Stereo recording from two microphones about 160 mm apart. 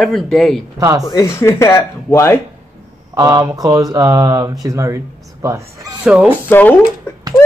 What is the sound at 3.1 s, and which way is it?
Speech, 20° right (ahead or behind).